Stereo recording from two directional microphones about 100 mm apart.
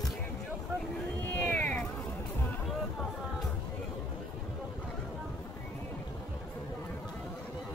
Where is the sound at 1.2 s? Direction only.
20° left (ahead or behind).